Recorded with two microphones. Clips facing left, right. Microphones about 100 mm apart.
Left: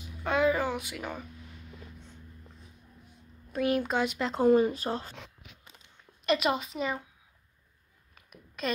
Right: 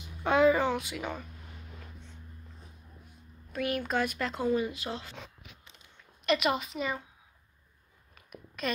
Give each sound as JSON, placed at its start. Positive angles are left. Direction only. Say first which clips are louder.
{"t": 0.2, "sound": "a child's voice", "louder": "right 3 dB", "side_deg": 0}
{"t": 3.5, "sound": "speech", "louder": "left 3 dB", "side_deg": 25}
{"t": 4.6, "sound": "a woman's voice", "louder": "left 6 dB", "side_deg": 40}
{"t": 6.2, "sound": "a woman's voice", "louder": "left 1 dB", "side_deg": 30}
{"t": 8.1, "sound": "a sound", "louder": "right 5 dB", "side_deg": 25}